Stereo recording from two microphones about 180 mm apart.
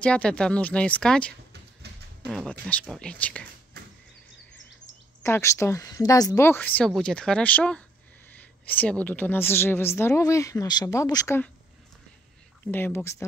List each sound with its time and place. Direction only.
0.0 s a woman's voice: 5° left (ahead or behind)
5.2 s a woman's voice: 15° left (ahead or behind)
12.7 s a woman's voice: 10° left (ahead or behind)